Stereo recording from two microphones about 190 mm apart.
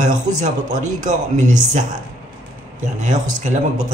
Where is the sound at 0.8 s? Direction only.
40° right (ahead or behind).